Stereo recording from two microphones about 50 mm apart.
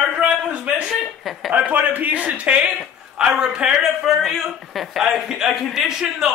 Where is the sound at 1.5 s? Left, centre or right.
Right; by 3.7 s centre.